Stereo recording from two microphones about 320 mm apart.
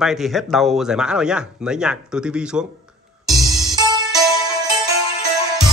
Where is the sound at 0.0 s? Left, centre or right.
Centre.